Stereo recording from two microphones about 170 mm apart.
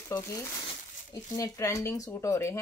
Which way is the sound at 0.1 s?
15° left (ahead or behind).